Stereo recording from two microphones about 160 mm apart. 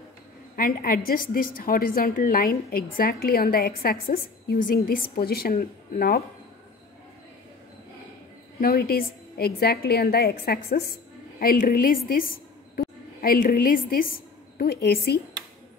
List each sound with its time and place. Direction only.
0.6 s a woman's voice: 65° left (ahead or behind)
8.5 s a woman's voice: 70° left (ahead or behind)